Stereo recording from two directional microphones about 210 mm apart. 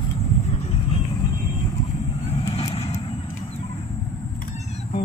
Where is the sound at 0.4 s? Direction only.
30° left (ahead or behind).